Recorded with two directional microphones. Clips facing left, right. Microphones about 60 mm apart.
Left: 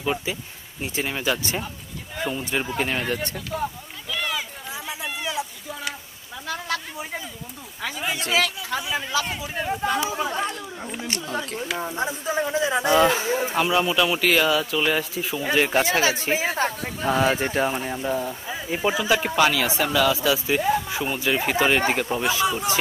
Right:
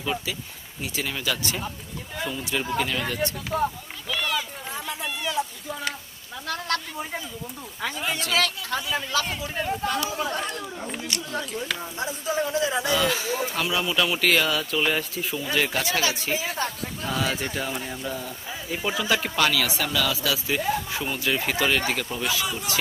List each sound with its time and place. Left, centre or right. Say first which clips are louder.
0.0 s speech: left 3 dB; left
2.8 s speech: left 2 dB; left
3.5 s a man's voice: right 3 dB; centre
4.1 s a sound: right 1 dB; centre
4.4 s a man's voice: right 1 dB; centre
11.1 s speech: left 4 dB; left
12.8 s speech: left 5 dB; left
13.9 s a man's voice: left 2 dB; centre
15.7 s speech: left 5 dB; left
18.9 s a man's voice: left 3 dB; centre; by 22.8 s left